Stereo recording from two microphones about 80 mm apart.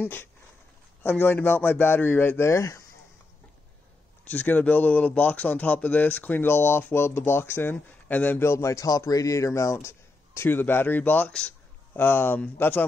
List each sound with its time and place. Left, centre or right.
0.0 s speech: left
4.2 s speech: left
8.5 s a man's voice: left